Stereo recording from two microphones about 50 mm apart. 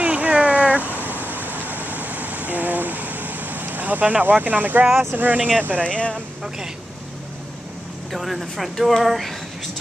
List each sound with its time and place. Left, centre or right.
0.0 s a sound: right
1.0 s vehicle: right
5.1 s speech: right
5.9 s speech: centre
8.1 s speech: centre